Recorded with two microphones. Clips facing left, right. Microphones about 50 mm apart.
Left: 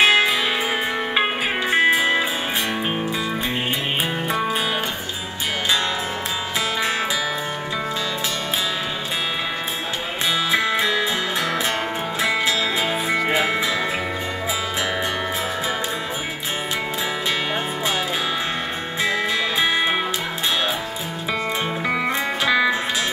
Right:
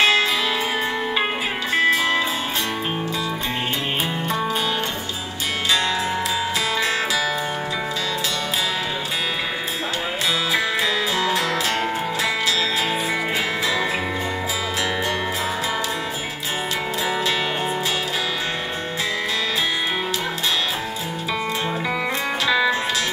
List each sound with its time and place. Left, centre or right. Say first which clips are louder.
0.0 s music: left 2 dB; centre
1.7 s music: left 1 dB; left
13.3 s music: left 2 dB; left